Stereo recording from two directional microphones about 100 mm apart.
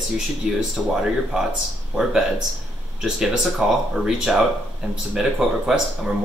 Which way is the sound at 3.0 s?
5° right (ahead or behind).